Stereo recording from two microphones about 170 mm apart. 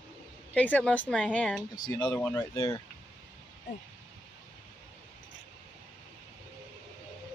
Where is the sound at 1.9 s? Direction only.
25° left (ahead or behind).